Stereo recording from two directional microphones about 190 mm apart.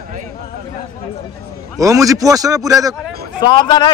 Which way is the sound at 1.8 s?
15° right (ahead or behind).